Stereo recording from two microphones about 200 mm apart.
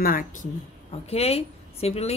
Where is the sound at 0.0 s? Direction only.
45° left (ahead or behind).